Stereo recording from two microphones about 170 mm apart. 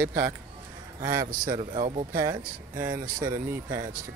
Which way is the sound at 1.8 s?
40° right (ahead or behind).